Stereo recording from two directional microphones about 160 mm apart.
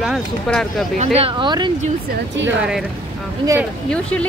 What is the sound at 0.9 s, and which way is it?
Speech, 40° right (ahead or behind).